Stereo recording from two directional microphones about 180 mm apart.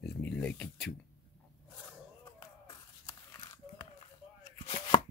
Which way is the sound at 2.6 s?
20° left (ahead or behind).